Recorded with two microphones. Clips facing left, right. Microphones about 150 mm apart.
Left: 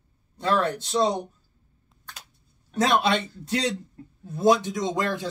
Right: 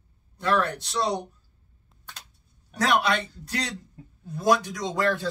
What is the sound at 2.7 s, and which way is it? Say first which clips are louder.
Speech: left 2 dB; 25° left (ahead or behind).